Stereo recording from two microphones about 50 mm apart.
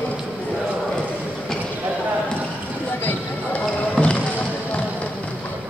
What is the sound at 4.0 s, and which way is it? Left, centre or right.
Boat, centre.